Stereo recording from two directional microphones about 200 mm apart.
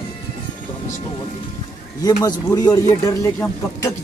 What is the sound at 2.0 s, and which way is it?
Speech, 15° left (ahead or behind).